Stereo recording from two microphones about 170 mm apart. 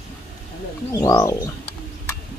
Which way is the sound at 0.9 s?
20° left (ahead or behind).